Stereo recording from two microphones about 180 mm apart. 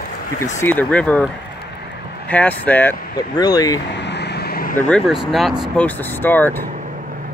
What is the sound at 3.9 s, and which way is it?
Vehicle, 70° left (ahead or behind).